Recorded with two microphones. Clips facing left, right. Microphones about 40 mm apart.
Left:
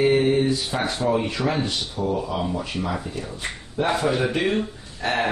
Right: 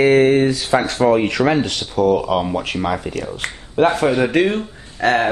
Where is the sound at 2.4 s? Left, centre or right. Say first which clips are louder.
Right 6 dB; right.